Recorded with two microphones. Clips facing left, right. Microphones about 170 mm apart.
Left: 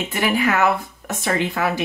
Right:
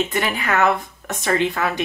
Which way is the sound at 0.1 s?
20° left (ahead or behind).